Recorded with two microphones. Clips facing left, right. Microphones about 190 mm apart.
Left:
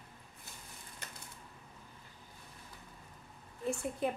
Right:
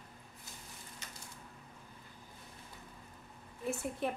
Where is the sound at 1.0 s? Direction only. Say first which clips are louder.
Left 5 dB; 55° left (ahead or behind).